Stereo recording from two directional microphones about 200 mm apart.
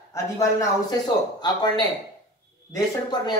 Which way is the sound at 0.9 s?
20° left (ahead or behind).